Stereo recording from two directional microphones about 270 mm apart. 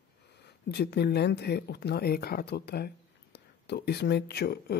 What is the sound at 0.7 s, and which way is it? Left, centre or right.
Speech, left.